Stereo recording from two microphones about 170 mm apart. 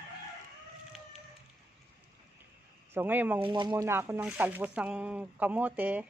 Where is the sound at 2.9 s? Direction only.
10° right (ahead or behind).